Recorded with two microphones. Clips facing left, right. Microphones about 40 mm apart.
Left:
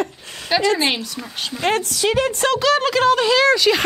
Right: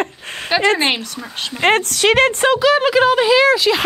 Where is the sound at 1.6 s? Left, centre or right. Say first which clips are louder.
Right 5 dB; right.